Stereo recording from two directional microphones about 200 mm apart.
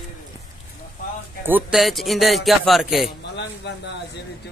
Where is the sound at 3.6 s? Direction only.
60° left (ahead or behind).